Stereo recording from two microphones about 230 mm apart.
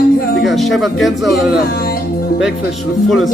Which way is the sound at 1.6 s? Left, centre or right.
Left.